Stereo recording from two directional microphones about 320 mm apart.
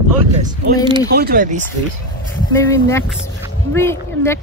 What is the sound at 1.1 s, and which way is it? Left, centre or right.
Speech, right.